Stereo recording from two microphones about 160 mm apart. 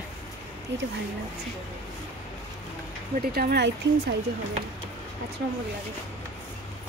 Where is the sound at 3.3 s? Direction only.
85° right.